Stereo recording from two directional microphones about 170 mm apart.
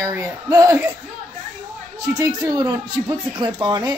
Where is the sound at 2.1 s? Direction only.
20° right (ahead or behind).